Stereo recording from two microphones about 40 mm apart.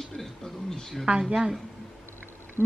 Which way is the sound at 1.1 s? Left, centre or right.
Right.